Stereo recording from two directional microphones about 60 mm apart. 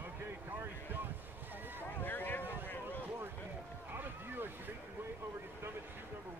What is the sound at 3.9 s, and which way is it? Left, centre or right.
Boat, right.